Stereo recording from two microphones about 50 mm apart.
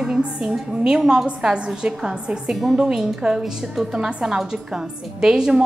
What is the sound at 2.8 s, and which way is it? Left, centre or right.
A woman's voice, centre.